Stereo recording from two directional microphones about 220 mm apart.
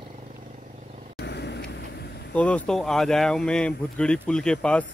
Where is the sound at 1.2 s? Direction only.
50° left (ahead or behind).